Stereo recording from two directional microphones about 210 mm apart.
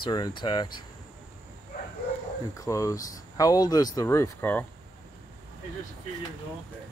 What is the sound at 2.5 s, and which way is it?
Speech, 15° left (ahead or behind).